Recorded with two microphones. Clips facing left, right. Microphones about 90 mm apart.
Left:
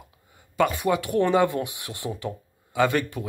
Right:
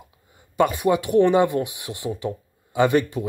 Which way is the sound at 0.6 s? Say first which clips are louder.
Right 3 dB; 20° right (ahead or behind).